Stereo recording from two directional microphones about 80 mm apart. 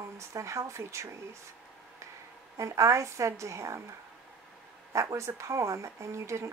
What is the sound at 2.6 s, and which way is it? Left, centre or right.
Speech, right.